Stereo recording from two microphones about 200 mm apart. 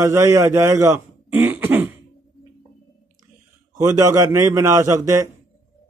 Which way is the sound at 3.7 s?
15° right (ahead or behind).